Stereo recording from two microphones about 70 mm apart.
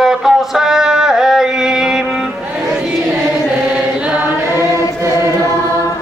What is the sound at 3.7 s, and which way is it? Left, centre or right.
Chant, right.